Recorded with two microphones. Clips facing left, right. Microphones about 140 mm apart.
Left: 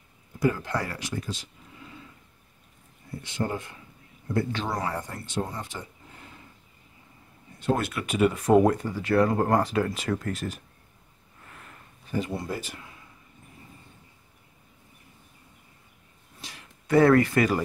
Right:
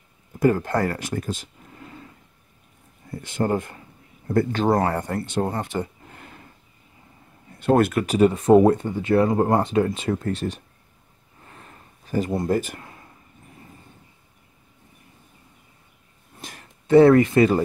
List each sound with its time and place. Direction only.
0.4 s speech: 50° right (ahead or behind)
3.1 s speech: 50° right (ahead or behind)
7.5 s speech: 55° right (ahead or behind); by 10.6 s 30° right (ahead or behind)
11.4 s a sound: 30° right (ahead or behind)
12.1 s speech: 45° right (ahead or behind)
16.3 s a sound: 50° right (ahead or behind)
16.8 s speech: 25° right (ahead or behind)